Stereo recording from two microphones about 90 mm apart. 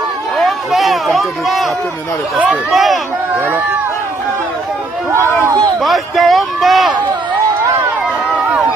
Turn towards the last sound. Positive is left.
turn(degrees=0)  # may be behind; listen again after turning